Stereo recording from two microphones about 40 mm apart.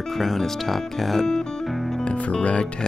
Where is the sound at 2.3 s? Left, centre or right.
Left.